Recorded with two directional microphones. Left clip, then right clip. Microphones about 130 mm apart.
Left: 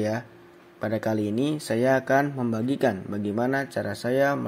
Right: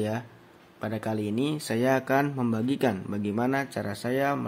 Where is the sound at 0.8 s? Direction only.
20° left (ahead or behind).